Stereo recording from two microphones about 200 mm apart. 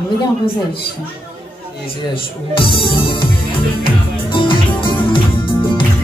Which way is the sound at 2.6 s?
25° left (ahead or behind).